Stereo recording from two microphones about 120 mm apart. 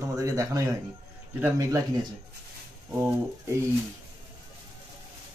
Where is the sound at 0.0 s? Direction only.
25° right (ahead or behind).